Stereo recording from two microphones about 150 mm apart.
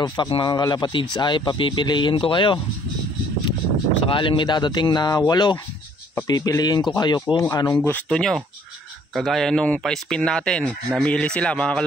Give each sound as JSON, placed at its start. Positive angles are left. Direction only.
{"t": 0.0, "sound": "a man's voice", "side_deg": 25}
{"t": 4.1, "sound": "speech", "side_deg": 35}
{"t": 7.8, "sound": "speech", "side_deg": 5}